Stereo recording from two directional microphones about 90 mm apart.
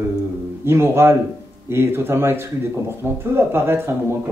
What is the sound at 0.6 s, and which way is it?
Speech, 30° right (ahead or behind).